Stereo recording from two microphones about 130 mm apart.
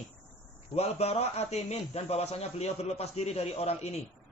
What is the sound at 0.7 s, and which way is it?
A man's voice, 55° left (ahead or behind).